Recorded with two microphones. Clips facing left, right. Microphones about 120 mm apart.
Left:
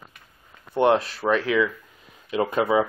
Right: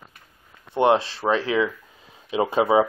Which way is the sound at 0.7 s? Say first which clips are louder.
Right 1 dB; 25° right (ahead or behind).